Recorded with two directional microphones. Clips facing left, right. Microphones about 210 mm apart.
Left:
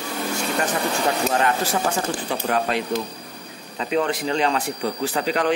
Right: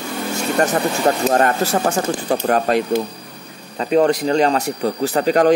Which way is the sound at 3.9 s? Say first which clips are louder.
Right 7 dB; 40° right (ahead or behind).